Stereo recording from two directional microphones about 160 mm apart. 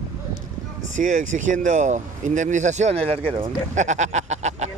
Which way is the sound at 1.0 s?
55° right (ahead or behind).